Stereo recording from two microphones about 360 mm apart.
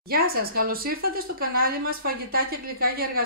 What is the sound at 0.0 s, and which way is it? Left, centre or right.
Speech, right.